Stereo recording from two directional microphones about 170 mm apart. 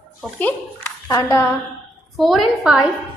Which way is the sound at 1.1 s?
15° left (ahead or behind).